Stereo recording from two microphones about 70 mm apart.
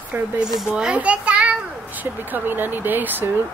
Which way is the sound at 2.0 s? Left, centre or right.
Right.